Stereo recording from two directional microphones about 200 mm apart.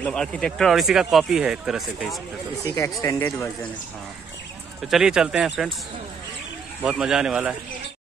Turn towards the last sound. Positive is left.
turn(degrees=-5)  # may be behind; listen again after turning